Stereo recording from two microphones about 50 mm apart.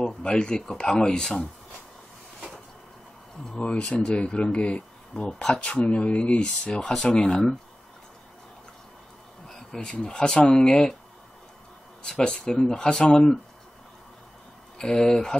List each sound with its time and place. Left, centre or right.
0.0 s speech: centre
3.5 s speech: centre
5.2 s speech: centre
5.7 s speech: left
9.5 s a sound: centre
9.8 s speech: centre
12.0 s speech: centre
14.8 s speech: centre